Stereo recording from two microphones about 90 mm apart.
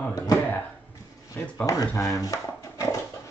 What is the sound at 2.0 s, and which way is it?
Dog, 40° left (ahead or behind).